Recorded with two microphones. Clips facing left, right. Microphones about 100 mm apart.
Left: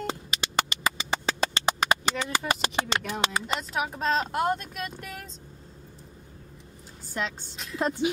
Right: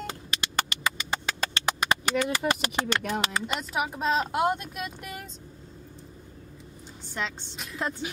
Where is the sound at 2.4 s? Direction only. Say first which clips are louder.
Right 1 dB; 15° left (ahead or behind).